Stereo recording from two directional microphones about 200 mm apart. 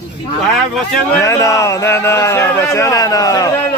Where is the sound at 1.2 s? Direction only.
15° left (ahead or behind).